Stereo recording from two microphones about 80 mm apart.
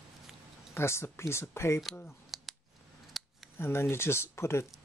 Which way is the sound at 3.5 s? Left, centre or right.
Left.